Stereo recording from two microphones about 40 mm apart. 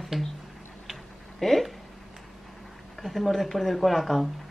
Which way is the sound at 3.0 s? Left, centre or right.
Centre.